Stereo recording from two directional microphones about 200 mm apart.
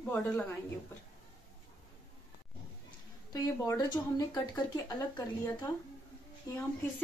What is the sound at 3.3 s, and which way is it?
Speech, 15° left (ahead or behind).